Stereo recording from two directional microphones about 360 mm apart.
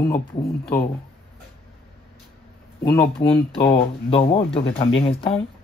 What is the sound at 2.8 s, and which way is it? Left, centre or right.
Speech, centre.